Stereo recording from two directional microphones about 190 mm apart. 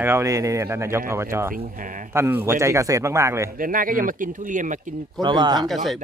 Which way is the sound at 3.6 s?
45° right (ahead or behind).